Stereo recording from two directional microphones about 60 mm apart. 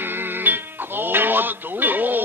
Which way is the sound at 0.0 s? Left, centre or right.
Right.